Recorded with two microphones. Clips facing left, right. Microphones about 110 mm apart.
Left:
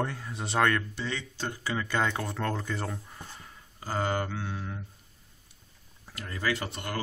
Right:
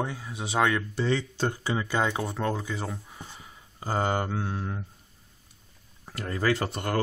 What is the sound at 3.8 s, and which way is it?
Speech, 25° right (ahead or behind).